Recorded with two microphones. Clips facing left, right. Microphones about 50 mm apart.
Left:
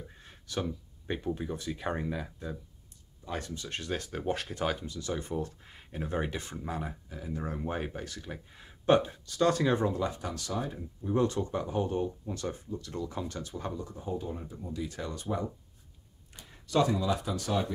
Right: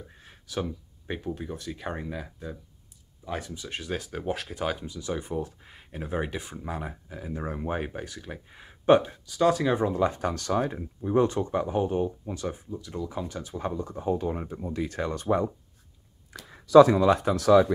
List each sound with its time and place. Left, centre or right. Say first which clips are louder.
0.2 s speech: right 3 dB; centre
9.1 s speech: right 4 dB; centre
9.8 s speech: right 6 dB; right
11.1 s speech: right 5 dB; right; by 13.2 s centre
13.3 s speech: right 5 dB; centre; by 15.5 s right
16.9 s speech: right 9 dB; right